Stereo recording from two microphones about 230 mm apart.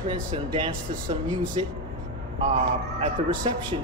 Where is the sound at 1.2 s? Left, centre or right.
Centre.